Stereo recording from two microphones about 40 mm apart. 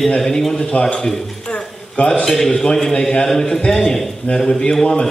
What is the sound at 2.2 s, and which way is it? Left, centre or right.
A man's voice, centre.